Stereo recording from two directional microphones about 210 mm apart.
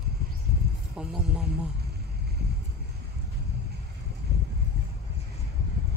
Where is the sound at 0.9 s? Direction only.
5° right (ahead or behind).